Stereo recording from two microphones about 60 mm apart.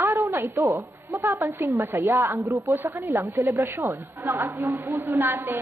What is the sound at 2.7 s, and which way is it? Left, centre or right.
Speech, right.